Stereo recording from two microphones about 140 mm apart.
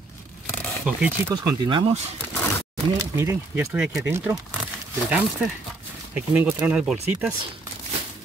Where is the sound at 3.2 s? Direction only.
15° right (ahead or behind).